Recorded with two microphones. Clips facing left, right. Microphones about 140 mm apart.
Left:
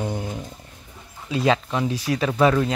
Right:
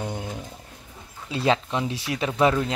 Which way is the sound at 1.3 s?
30° right (ahead or behind).